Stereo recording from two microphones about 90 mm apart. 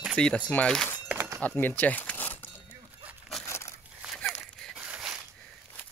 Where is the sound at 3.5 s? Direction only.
30° left (ahead or behind).